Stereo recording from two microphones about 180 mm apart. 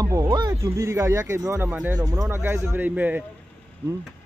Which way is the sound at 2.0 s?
20° right (ahead or behind).